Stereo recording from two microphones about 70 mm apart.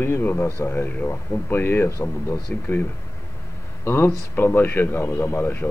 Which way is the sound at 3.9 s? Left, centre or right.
Left.